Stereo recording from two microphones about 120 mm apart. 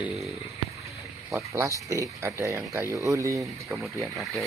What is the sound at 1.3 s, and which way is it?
Speech, 25° right (ahead or behind).